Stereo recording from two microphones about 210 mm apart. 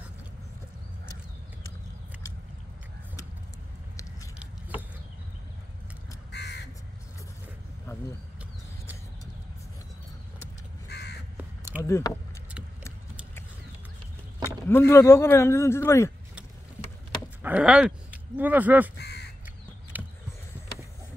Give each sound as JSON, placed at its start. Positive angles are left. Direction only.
{"t": 6.3, "sound": "crow", "side_deg": 55}
{"t": 10.9, "sound": "crow", "side_deg": 55}
{"t": 11.8, "sound": "speech", "side_deg": 15}
{"t": 14.7, "sound": "a man's voice", "side_deg": 10}
{"t": 17.4, "sound": "speech", "side_deg": -5}
{"t": 18.9, "sound": "crow", "side_deg": 50}
{"t": 19.9, "sound": "a sound", "side_deg": -10}